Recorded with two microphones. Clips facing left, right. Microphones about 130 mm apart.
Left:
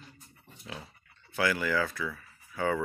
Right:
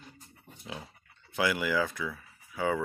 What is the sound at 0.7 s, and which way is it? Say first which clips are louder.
Dog: right 1 dB; 15° right (ahead or behind).